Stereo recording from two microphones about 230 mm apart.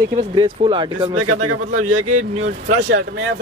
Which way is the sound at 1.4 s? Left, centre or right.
Right.